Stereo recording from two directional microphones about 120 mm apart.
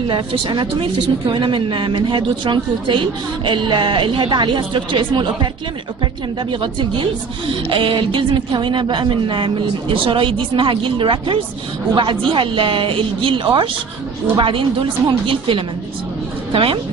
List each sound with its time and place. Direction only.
0.1 s a woman's voice: 45° right (ahead or behind)
6.5 s a woman's voice: 45° right (ahead or behind)